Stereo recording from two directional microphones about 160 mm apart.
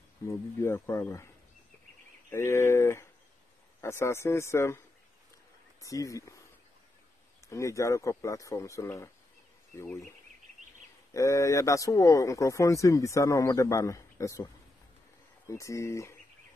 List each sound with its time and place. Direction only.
0.3 s speech: 15° left (ahead or behind)
2.3 s speech: 15° left (ahead or behind)
5.8 s a man's voice: 20° left (ahead or behind)
7.4 s a man's voice: 20° left (ahead or behind)
11.1 s a man's voice: 20° left (ahead or behind)